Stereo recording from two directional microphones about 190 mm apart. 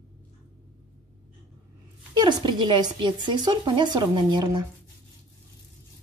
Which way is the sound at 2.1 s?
20° right (ahead or behind).